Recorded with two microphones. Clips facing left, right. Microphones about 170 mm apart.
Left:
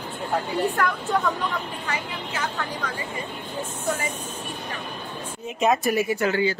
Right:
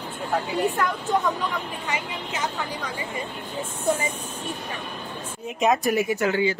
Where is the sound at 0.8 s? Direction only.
20° right (ahead or behind).